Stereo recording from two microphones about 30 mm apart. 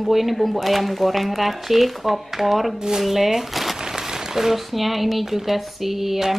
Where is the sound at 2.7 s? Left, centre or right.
Right.